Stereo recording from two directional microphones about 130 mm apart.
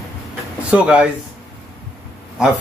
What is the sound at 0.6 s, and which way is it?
Speech, 10° right (ahead or behind).